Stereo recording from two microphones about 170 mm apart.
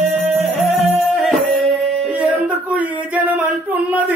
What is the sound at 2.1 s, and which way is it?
Speech, 10° right (ahead or behind).